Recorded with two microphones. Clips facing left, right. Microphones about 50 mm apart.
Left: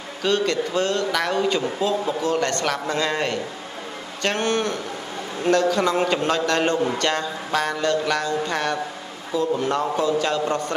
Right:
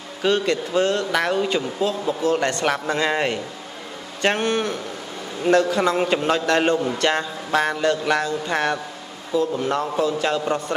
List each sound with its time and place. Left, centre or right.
0.2 s a man's voice: centre
2.4 s speech: centre
9.3 s a man's voice: centre